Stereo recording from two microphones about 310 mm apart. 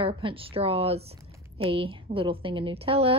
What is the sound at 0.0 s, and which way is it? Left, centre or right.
Speech, centre.